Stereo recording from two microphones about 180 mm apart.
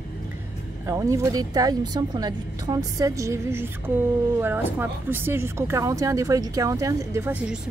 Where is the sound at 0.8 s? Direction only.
15° right (ahead or behind).